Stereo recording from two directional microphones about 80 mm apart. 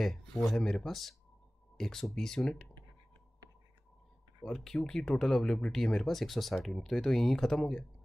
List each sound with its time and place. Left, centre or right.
0.0 s speech: centre
4.4 s speech: centre